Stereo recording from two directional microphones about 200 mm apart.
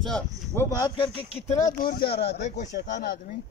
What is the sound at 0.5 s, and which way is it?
Speech, 20° left (ahead or behind).